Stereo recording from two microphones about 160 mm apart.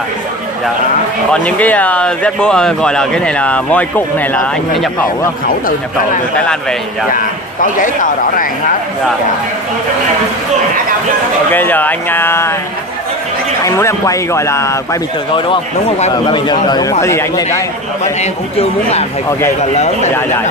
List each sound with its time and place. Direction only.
1.3 s speech: 10° left (ahead or behind)
6.3 s a man's voice: 5° left (ahead or behind)
7.1 s a man's voice: 60° left (ahead or behind)
11.5 s speech: 10° left (ahead or behind)
13.7 s speech: 20° left (ahead or behind)
15.3 s speech: 30° left (ahead or behind)
18.2 s speech: 40° left (ahead or behind)